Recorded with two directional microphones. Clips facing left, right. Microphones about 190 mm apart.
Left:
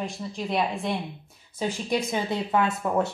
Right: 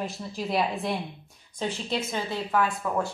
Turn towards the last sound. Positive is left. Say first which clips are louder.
# left 3 dB
turn(degrees=20)  # may be behind; listen again after turning